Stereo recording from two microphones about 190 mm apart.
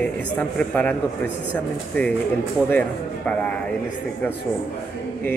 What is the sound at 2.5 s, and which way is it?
Speech, 10° left (ahead or behind).